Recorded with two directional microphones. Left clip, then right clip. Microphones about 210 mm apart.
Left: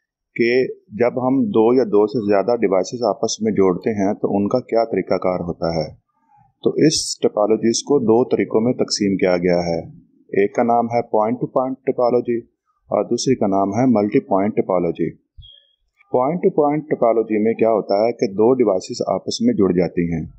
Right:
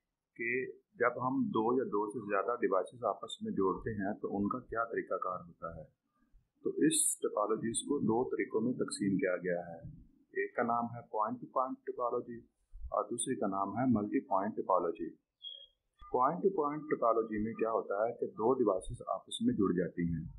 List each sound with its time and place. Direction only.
0.3 s speech: 30° left (ahead or behind)
16.1 s speech: 25° left (ahead or behind)